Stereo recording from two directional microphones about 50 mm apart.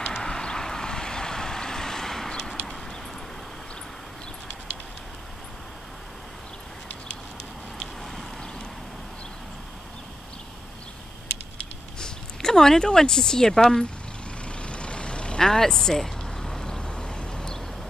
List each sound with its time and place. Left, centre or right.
0.0 s vehicle: centre
12.0 s speech: centre
14.4 s vehicle: left